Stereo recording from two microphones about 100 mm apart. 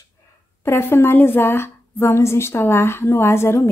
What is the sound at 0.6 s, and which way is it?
A woman's voice, 25° left (ahead or behind).